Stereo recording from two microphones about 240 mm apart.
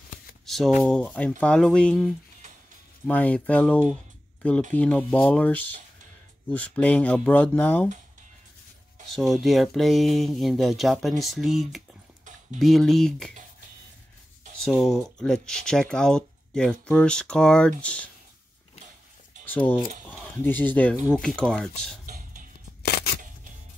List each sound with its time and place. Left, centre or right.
0.5 s speech: centre
3.1 s speech: centre
9.1 s speech: centre
14.6 s speech: centre
19.4 s a sound: centre
20.1 s speech: centre
22.0 s music: right
22.8 s scissors: left